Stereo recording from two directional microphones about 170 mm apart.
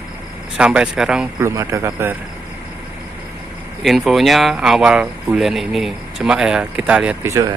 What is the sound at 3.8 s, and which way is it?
Speech, centre (ahead or behind).